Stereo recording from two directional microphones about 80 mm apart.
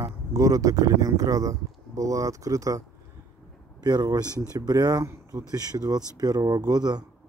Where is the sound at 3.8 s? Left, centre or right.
Right.